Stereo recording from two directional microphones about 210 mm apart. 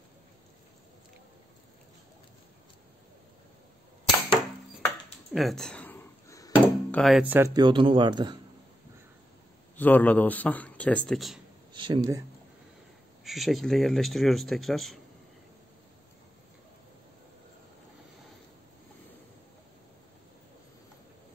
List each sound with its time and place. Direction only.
5.3 s drawer open or close: centre (ahead or behind)
7.0 s speech: centre (ahead or behind); by 8.4 s 20° right (ahead or behind)
9.8 s a man's voice: 10° left (ahead or behind)
11.7 s speech: 20° right (ahead or behind)
13.2 s speech: centre (ahead or behind)